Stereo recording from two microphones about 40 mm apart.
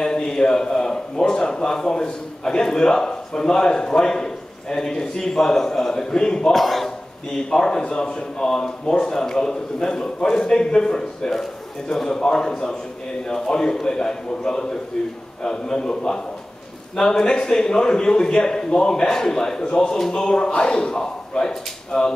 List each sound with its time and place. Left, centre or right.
0.0 s a man's voice: centre
6.5 s a man's voice: centre
7.3 s a man's voice: centre